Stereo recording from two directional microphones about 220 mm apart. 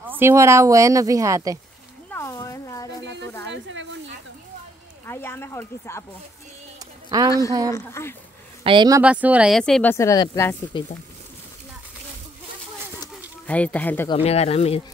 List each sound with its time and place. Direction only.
0.0 s speech: 10° right (ahead or behind)
2.0 s a sound: 10° left (ahead or behind)
3.4 s a sound: 55° right (ahead or behind)
5.0 s speech: 10° left (ahead or behind)
7.1 s speech: 15° right (ahead or behind)
7.7 s speech: 10° left (ahead or behind)
8.6 s speech: 20° right (ahead or behind)
9.0 s speech: 5° right (ahead or behind); by 10.8 s 15° left (ahead or behind)
13.5 s speech: 5° left (ahead or behind)
14.0 s speech: 25° left (ahead or behind)